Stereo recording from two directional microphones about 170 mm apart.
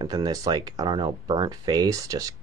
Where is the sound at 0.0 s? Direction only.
25° right (ahead or behind).